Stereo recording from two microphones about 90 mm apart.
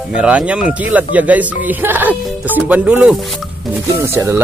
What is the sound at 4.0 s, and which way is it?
Speech, 30° right (ahead or behind).